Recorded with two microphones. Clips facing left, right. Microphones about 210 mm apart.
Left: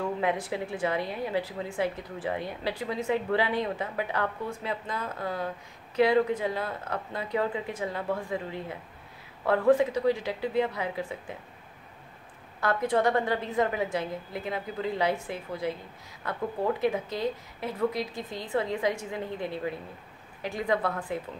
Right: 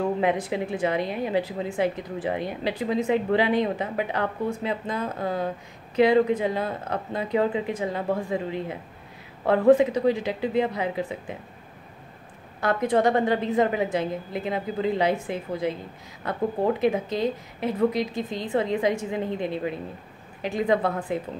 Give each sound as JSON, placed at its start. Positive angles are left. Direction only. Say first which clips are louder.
{"t": 0.0, "sound": "a woman's voice", "louder": "right 5 dB", "side_deg": -20}
{"t": 12.5, "sound": "a woman's voice", "louder": "right 4 dB", "side_deg": -20}